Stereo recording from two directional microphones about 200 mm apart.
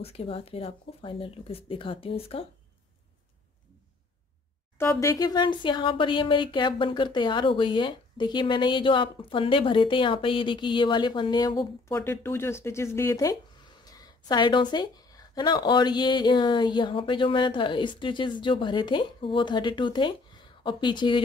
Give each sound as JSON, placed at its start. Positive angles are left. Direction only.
{"t": 0.0, "sound": "speech", "side_deg": 30}
{"t": 4.7, "sound": "speech", "side_deg": 15}